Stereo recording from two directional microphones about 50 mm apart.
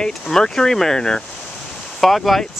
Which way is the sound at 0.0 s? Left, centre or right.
Centre.